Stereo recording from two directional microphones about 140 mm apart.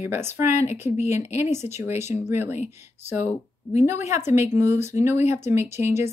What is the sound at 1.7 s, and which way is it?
Speech, 55° left (ahead or behind).